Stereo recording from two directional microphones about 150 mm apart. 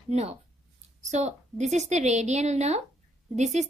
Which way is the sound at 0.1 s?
45° right (ahead or behind).